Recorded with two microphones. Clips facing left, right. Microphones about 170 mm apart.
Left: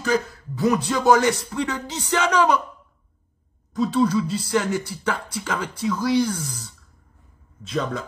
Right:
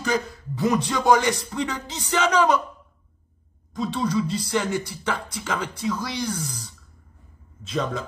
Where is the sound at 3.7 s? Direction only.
5° left (ahead or behind).